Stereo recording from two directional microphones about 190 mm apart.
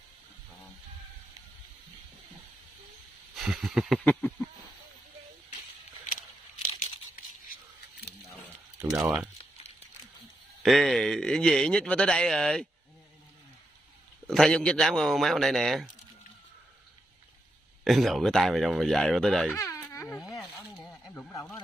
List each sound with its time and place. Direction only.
3.3 s speech: centre (ahead or behind)
4.0 s a sound: 10° left (ahead or behind)
8.9 s speech: 10° right (ahead or behind)
10.6 s speech: centre (ahead or behind)
14.3 s speech: 5° left (ahead or behind)
17.8 s speech: centre (ahead or behind)
19.6 s baby cry: 15° left (ahead or behind)
20.2 s wild animals: centre (ahead or behind)
20.7 s a sound: 15° left (ahead or behind)